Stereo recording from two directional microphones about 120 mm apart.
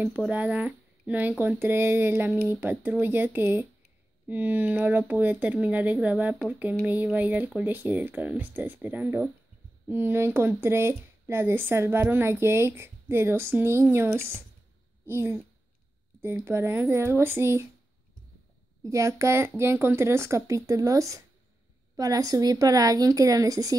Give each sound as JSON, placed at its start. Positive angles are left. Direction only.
{"t": 0.3, "sound": "speech", "side_deg": -10}
{"t": 18.9, "sound": "speech", "side_deg": -25}